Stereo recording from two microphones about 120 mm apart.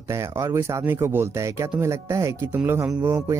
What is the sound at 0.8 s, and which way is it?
Speech, 20° right (ahead or behind).